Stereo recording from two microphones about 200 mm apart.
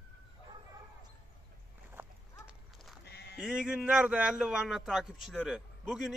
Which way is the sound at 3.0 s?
55° left (ahead or behind).